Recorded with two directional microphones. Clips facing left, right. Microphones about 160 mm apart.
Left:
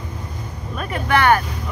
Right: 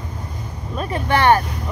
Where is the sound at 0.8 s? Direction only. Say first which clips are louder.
Even; 30° right (ahead or behind).